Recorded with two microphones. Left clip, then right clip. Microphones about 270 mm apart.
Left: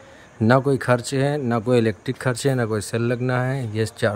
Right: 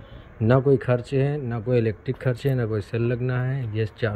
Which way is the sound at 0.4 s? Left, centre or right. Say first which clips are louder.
Left 2 dB; centre.